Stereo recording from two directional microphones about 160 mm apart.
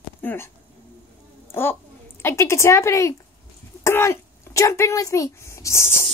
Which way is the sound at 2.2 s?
15° left (ahead or behind).